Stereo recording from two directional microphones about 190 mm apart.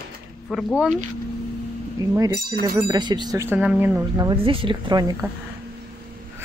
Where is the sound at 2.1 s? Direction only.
15° right (ahead or behind).